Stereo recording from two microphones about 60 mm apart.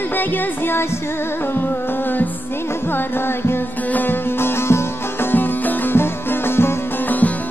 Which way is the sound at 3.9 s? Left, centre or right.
Left.